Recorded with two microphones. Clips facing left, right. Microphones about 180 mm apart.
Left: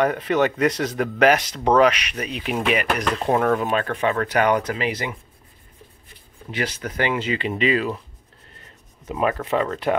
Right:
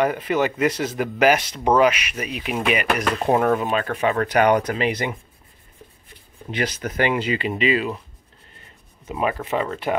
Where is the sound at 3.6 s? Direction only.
10° right (ahead or behind).